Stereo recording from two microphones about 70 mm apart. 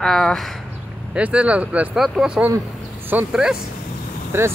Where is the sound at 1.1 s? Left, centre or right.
Centre.